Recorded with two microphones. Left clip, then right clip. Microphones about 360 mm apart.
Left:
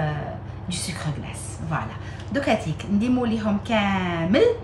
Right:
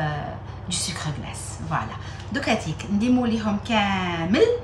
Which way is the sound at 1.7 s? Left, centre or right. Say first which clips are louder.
Right 2 dB; centre.